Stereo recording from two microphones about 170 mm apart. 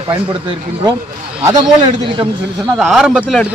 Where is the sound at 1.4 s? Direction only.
20° right (ahead or behind).